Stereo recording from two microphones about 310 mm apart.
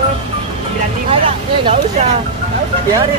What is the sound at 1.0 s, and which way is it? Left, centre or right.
Speech, centre.